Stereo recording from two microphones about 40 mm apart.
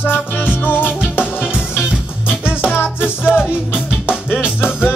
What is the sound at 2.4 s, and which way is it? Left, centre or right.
Music, left.